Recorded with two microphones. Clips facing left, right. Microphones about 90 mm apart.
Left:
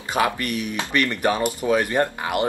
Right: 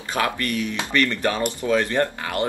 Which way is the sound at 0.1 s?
15° left (ahead or behind).